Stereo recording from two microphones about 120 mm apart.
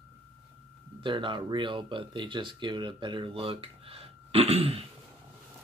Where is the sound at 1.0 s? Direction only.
40° right (ahead or behind).